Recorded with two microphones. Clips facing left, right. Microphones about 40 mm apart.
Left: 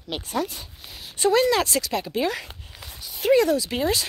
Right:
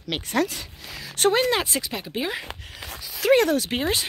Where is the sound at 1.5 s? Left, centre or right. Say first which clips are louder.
Left 2 dB; right.